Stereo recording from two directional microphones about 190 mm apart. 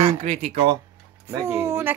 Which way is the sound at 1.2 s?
15° right (ahead or behind).